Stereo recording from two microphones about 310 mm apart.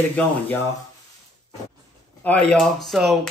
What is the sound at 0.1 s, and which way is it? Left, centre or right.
Speech, centre.